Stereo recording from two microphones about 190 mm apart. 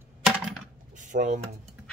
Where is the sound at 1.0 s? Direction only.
40° right (ahead or behind).